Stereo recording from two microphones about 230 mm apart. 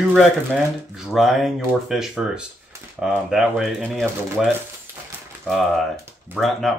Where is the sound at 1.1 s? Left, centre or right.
Centre.